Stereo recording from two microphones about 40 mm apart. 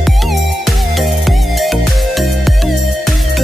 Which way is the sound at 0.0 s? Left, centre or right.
Centre.